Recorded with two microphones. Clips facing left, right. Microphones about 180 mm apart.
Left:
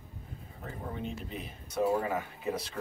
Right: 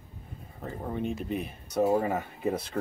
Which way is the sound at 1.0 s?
50° right (ahead or behind).